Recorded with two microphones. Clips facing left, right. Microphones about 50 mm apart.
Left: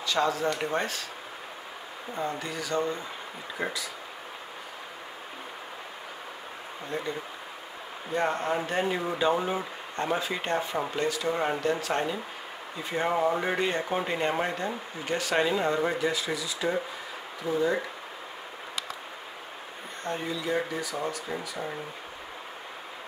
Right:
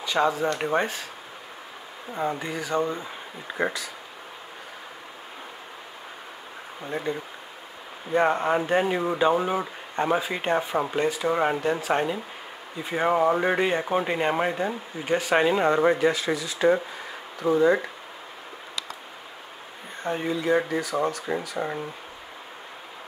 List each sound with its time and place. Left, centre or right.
0.0 s speech: centre
2.1 s speech: right
3.5 s speech: right
6.9 s speech: centre; by 16.7 s right
17.4 s speech: right
20.2 s speech: right
21.0 s speech: right